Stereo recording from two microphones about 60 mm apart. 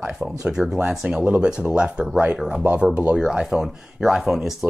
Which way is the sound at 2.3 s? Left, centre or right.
Centre.